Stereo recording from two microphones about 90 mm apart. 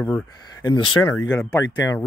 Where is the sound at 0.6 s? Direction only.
55° left (ahead or behind).